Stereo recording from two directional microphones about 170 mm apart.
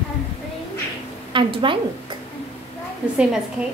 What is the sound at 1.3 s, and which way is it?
Speech, 30° right (ahead or behind).